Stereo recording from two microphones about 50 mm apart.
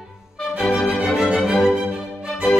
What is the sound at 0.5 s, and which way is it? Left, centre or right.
Music, centre.